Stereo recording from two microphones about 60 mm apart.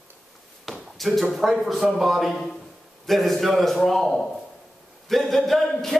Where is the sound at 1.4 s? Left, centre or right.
Centre.